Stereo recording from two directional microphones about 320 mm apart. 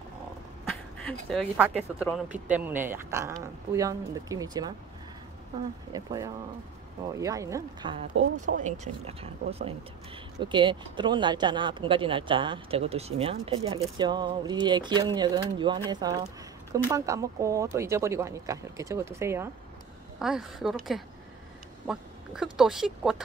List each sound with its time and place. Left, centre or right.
1.0 s speech: centre
5.9 s speech: centre